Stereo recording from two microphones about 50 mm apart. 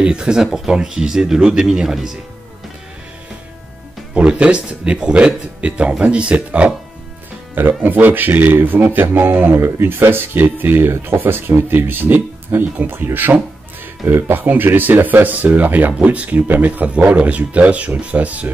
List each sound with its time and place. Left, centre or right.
0.0 s speech: centre
4.1 s speech: right
7.5 s speech: right
9.5 s speech: right
14.4 s speech: right